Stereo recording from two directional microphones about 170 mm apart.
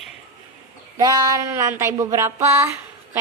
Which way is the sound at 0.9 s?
20° right (ahead or behind).